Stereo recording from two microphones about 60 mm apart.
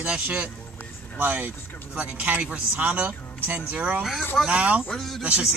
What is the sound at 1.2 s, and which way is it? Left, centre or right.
Speech, right.